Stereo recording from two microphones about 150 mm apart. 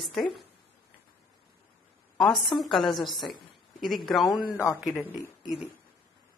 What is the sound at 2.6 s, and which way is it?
A woman's voice, centre (ahead or behind).